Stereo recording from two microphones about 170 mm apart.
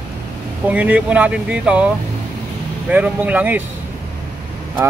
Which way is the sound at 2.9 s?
10° right (ahead or behind).